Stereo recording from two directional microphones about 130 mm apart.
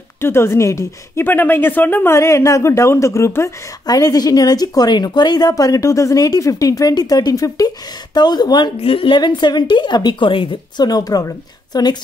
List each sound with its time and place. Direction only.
0.2 s a woman's voice: 20° left (ahead or behind)